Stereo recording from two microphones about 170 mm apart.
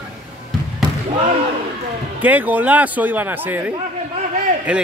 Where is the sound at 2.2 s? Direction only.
10° right (ahead or behind).